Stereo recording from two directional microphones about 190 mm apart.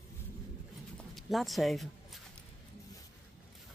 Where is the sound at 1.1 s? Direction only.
Centre (ahead or behind).